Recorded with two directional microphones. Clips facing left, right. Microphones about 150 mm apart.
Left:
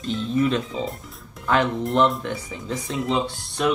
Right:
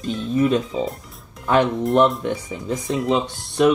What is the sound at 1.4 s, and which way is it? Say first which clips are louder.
Speech: right 3 dB; 20° right (ahead or behind).